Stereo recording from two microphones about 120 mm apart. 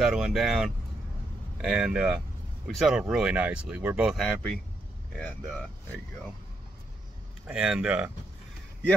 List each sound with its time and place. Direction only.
0.0 s speech: 5° right (ahead or behind)
4.2 s speech: 10° left (ahead or behind)
7.4 s speech: 10° right (ahead or behind)